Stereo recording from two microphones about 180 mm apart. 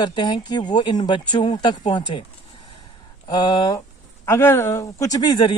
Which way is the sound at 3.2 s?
25° left (ahead or behind).